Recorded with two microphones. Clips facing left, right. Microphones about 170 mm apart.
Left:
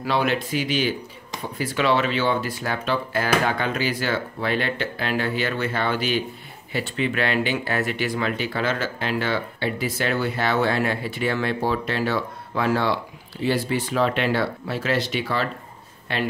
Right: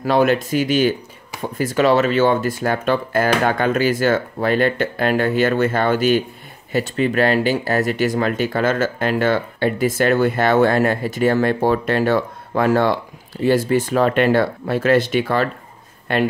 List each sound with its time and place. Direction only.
0.0 s speech: 45° right (ahead or behind)